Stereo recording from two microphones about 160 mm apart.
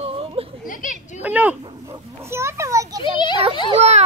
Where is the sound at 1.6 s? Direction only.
30° right (ahead or behind).